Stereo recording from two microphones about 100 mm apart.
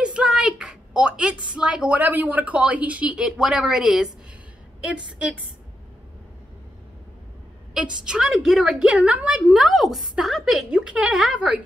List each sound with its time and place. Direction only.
0.0 s a woman's voice: 10° right (ahead or behind)
7.7 s a woman's voice: 10° right (ahead or behind)